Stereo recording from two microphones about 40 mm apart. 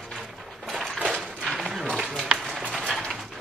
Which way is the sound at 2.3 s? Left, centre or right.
Right.